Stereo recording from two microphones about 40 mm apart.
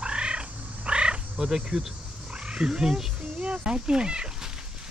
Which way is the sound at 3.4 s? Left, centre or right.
Right.